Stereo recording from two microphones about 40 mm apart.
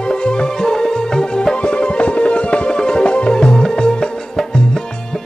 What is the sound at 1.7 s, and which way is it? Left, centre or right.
Music, left.